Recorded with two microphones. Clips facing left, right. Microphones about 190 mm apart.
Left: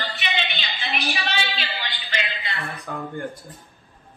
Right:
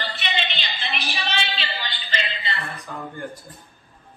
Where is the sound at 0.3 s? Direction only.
Centre (ahead or behind).